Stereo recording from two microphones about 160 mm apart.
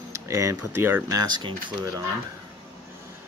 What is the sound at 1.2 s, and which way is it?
Speech, 30° right (ahead or behind).